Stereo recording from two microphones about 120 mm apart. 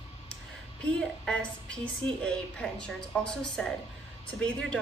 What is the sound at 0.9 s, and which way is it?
A woman's voice, 10° left (ahead or behind).